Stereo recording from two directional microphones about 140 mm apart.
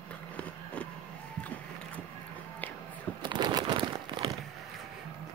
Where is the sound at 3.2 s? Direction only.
35° right (ahead or behind).